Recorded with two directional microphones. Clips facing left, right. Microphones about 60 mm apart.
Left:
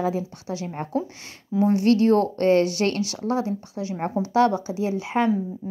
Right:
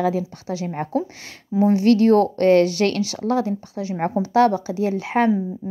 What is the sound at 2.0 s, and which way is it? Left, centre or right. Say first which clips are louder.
Speech: right 4 dB; right.